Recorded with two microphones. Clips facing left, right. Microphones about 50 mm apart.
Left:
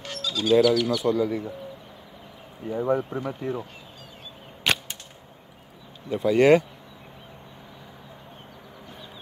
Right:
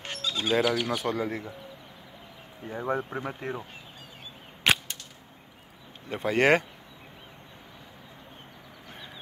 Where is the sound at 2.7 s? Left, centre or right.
Right.